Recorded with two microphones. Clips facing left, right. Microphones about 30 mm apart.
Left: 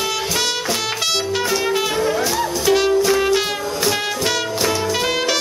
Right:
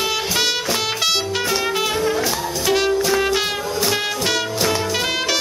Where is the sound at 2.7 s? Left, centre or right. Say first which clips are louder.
Left 2 dB; centre.